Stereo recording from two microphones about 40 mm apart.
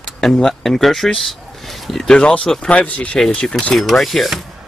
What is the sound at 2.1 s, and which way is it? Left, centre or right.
Speech, left.